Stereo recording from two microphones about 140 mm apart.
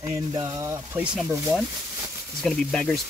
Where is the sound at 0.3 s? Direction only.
30° right (ahead or behind).